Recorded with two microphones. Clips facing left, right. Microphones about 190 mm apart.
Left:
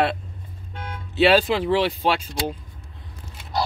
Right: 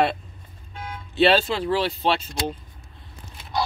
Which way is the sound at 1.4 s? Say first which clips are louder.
Left 3 dB; 15° left (ahead or behind).